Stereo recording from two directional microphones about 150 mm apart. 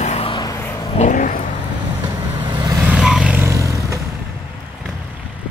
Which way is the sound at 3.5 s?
20° right (ahead or behind).